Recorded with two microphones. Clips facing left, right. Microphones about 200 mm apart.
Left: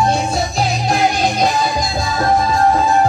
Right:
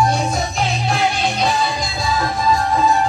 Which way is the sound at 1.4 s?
45° left (ahead or behind).